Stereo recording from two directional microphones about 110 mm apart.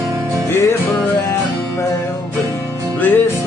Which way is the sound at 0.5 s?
25° left (ahead or behind).